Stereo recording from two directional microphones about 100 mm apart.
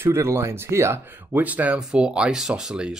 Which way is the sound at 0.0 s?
25° right (ahead or behind).